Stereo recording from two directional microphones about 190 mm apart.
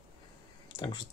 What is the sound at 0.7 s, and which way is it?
Speech, 25° left (ahead or behind).